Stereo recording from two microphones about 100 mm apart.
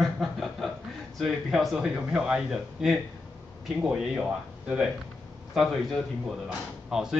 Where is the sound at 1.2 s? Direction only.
Centre (ahead or behind).